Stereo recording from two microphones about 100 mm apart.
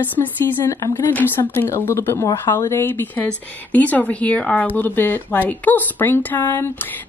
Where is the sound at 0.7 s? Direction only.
30° left (ahead or behind).